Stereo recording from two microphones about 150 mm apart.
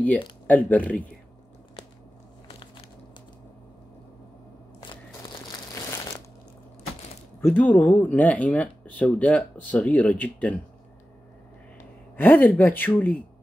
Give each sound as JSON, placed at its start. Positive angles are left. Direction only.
{"t": 0.7, "sound": "speech", "side_deg": 10}
{"t": 5.8, "sound": "crumpling", "side_deg": 20}
{"t": 7.4, "sound": "speech", "side_deg": 10}
{"t": 12.2, "sound": "speech", "side_deg": 10}